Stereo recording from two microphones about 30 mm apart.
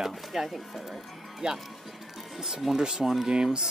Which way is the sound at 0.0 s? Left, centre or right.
Centre.